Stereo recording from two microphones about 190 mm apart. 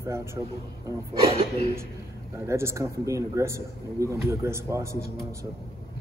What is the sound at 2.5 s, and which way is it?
Speech, 15° right (ahead or behind).